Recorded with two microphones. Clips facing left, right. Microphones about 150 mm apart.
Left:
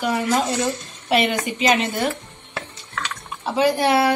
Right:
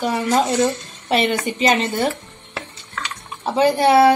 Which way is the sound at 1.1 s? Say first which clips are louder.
Right 1 dB; 35° right (ahead or behind).